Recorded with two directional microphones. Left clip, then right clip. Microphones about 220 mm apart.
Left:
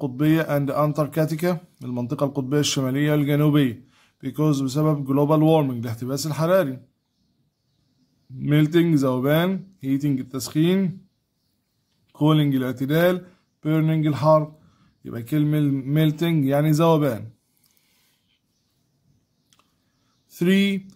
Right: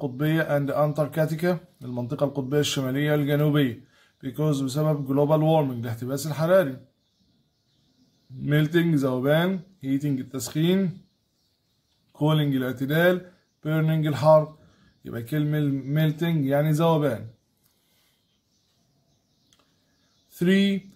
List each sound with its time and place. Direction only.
0.0 s a man's voice: 30° left (ahead or behind)
8.4 s a man's voice: 25° left (ahead or behind)
12.1 s a man's voice: 25° left (ahead or behind)
20.3 s a man's voice: 30° left (ahead or behind)